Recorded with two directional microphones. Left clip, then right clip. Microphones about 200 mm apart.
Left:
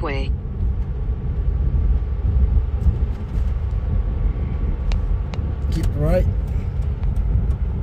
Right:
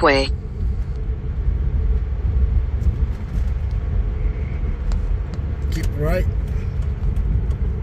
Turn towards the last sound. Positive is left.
turn(degrees=10)  # may be behind; listen again after turning